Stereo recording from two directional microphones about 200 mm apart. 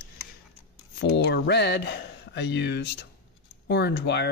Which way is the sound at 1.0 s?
55° left (ahead or behind).